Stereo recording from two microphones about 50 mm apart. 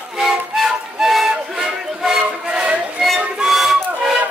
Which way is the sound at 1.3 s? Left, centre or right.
Centre.